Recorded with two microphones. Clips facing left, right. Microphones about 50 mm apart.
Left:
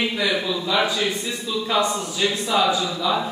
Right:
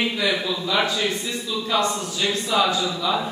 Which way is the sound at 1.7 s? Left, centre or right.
Centre.